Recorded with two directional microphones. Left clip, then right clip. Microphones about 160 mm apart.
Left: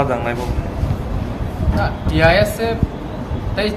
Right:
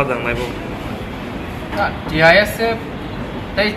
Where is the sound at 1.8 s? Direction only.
15° left (ahead or behind).